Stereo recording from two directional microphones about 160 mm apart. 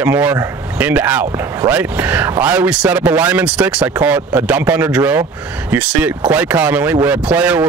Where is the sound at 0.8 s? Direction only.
10° right (ahead or behind).